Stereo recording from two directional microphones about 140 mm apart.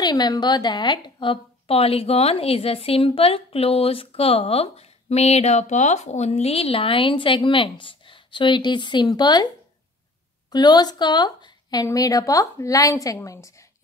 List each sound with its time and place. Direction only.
0.0 s a woman's voice: 25° left (ahead or behind)
10.5 s a woman's voice: 30° left (ahead or behind)